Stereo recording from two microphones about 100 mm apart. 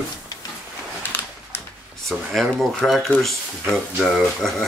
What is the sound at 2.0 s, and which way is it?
Speech, 5° left (ahead or behind).